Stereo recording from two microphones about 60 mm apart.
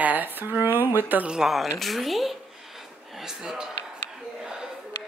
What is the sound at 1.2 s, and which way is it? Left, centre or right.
A woman's voice, centre.